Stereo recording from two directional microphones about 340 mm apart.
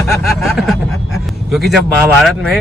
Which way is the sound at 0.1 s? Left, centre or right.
Centre.